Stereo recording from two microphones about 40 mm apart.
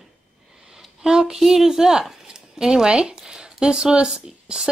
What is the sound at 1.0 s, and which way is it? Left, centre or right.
Speech, centre.